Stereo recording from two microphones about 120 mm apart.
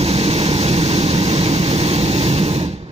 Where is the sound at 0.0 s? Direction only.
60° right (ahead or behind).